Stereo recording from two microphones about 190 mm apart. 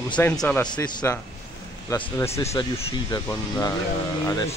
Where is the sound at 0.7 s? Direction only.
20° left (ahead or behind).